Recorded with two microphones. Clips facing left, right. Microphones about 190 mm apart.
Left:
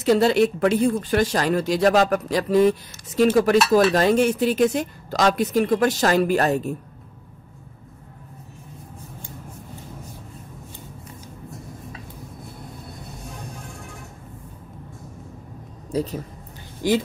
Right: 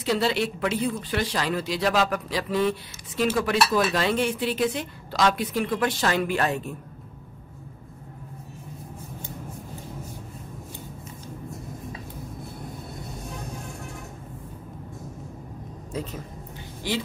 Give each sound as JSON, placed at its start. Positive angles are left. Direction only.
{"t": 0.0, "sound": "speech", "side_deg": 45}
{"t": 15.9, "sound": "speech", "side_deg": 35}